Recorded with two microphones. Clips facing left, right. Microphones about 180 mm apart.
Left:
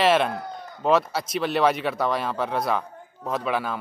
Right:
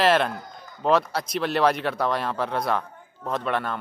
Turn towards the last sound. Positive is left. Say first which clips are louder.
# even
turn(degrees=5)  # may be behind; listen again after turning